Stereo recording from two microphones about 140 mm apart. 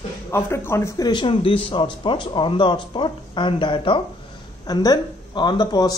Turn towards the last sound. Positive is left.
turn(degrees=30)  # may be behind; listen again after turning